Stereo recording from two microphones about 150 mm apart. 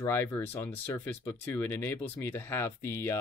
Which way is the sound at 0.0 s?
15° left (ahead or behind).